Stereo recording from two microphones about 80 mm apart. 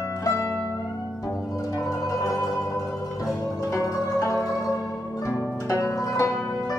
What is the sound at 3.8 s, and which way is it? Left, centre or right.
Zither, left.